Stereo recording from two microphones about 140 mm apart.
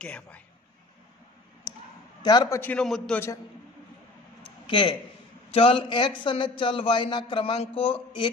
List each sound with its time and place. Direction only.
0.0 s a man's voice: 10° left (ahead or behind)
1.7 s a sound: 20° left (ahead or behind)
2.2 s a man's voice: 30° left (ahead or behind)
2.6 s a man's voice: 5° left (ahead or behind)
4.4 s a sound: 35° left (ahead or behind)
5.5 s a man's voice: 40° left (ahead or behind)